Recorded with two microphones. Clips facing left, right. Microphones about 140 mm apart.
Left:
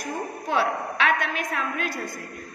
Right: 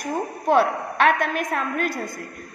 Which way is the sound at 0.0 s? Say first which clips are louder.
Right 5 dB; 50° right (ahead or behind).